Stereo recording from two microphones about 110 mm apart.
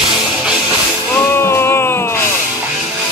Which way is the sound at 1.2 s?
20° left (ahead or behind).